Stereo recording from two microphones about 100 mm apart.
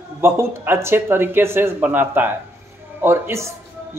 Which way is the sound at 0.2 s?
25° right (ahead or behind).